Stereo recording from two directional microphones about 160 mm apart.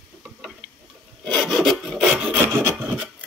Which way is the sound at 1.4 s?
Centre (ahead or behind).